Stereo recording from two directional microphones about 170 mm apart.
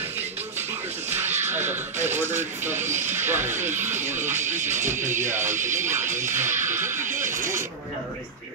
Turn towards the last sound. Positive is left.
turn(degrees=-50)  # may be behind; listen again after turning